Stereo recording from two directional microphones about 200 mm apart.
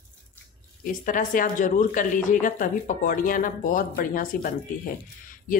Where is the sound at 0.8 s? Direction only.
40° left (ahead or behind).